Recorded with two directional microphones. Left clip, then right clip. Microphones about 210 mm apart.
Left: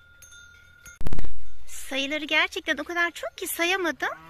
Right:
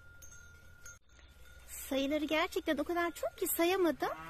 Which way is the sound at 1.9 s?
10° right (ahead or behind).